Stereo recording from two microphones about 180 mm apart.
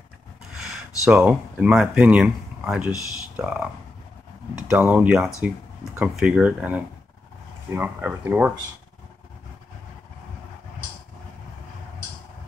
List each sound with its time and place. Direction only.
0.6 s speech: 5° right (ahead or behind)
4.6 s speech: 5° right (ahead or behind)